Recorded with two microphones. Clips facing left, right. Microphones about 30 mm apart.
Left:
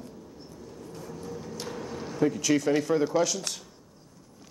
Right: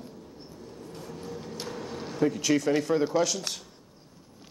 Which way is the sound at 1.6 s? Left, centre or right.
Centre.